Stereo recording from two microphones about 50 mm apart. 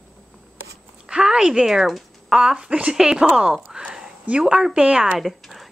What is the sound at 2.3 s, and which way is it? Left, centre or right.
Speech, centre.